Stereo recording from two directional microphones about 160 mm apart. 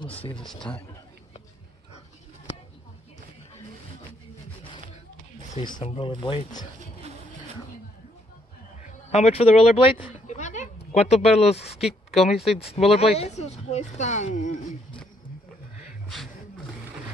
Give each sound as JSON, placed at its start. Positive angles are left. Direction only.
{"t": 0.0, "sound": "speech", "side_deg": 35}
{"t": 5.6, "sound": "speech", "side_deg": 30}
{"t": 6.8, "sound": "music", "side_deg": -40}
{"t": 9.1, "sound": "speech", "side_deg": 40}
{"t": 10.0, "sound": "a sound", "side_deg": 50}
{"t": 11.8, "sound": "speech", "side_deg": 0}
{"t": 12.5, "sound": "speech", "side_deg": 40}